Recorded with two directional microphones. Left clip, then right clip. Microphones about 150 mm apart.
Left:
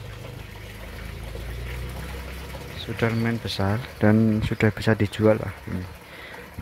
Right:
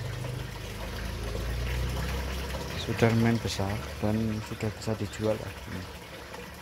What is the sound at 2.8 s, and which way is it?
Speech, 5° left (ahead or behind).